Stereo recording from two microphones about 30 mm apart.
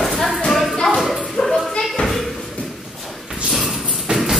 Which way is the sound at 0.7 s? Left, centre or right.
Centre.